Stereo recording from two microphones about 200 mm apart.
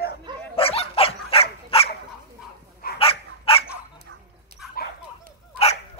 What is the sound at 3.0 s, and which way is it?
Dog, 30° left (ahead or behind).